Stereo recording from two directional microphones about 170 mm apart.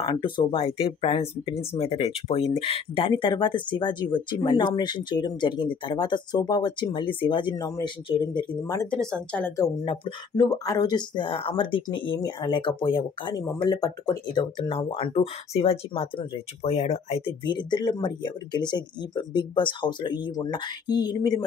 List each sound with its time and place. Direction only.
0.0 s speech: 30° left (ahead or behind)
9.0 s speech: 5° left (ahead or behind)
9.6 s speech: 25° left (ahead or behind)
17.5 s speech: 25° left (ahead or behind)